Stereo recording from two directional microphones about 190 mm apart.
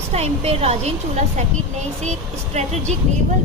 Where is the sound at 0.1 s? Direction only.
35° right (ahead or behind).